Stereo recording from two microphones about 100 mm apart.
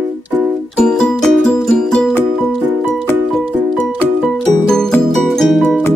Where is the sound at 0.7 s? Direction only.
10° left (ahead or behind).